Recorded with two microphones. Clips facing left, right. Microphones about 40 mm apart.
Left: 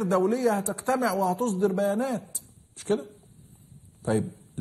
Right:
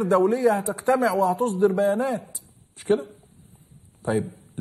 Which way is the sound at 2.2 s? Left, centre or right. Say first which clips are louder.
Right 1 dB; right.